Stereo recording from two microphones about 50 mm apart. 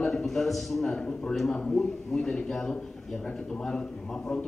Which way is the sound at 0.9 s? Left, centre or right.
Centre.